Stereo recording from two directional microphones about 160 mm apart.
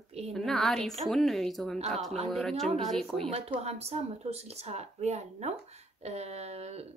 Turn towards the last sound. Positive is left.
turn(degrees=-40)  # may be behind; listen again after turning